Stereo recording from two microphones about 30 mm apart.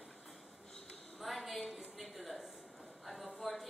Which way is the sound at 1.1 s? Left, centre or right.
Centre.